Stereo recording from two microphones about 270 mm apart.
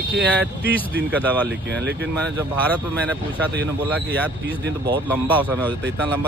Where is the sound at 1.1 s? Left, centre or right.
Centre.